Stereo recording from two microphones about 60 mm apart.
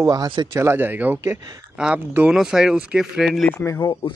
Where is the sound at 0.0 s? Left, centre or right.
Right.